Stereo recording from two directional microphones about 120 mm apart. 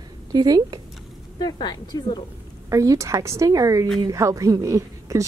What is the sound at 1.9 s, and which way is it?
Speech, 30° left (ahead or behind).